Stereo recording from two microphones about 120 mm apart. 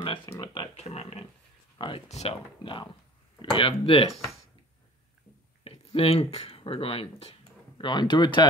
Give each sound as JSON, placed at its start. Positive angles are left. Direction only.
{"t": 0.3, "sound": "a sound", "side_deg": 35}
{"t": 0.7, "sound": "a sound", "side_deg": 65}
{"t": 1.8, "sound": "speech", "side_deg": 45}
{"t": 2.0, "sound": "speech", "side_deg": 65}
{"t": 2.6, "sound": "speech", "side_deg": 45}
{"t": 4.1, "sound": "speech", "side_deg": 0}
{"t": 5.6, "sound": "speech", "side_deg": 55}